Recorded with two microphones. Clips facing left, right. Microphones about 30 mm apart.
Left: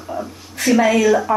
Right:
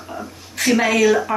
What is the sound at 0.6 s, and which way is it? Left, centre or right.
Speech, right.